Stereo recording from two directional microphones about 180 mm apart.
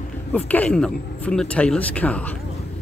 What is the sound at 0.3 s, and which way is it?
Speech, 10° left (ahead or behind).